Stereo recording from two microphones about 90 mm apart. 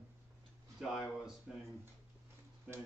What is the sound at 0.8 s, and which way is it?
Speech, 5° right (ahead or behind).